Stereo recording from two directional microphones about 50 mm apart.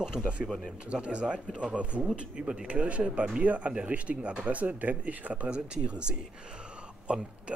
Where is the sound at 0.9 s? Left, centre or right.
Right.